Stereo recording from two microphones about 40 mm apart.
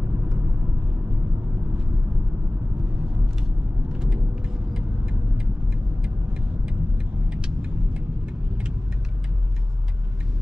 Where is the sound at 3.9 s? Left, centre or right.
Right.